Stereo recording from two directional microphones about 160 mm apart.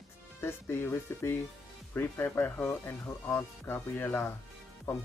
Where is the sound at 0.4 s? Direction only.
15° left (ahead or behind).